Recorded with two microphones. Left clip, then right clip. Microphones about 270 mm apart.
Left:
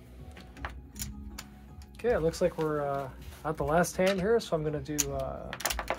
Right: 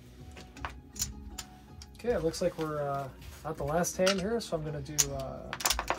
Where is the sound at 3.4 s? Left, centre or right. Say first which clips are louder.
Left 4 dB; left.